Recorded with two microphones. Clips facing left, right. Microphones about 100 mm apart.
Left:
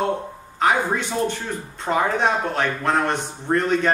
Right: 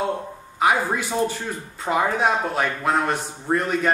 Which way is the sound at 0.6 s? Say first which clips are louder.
Even; 5° right (ahead or behind).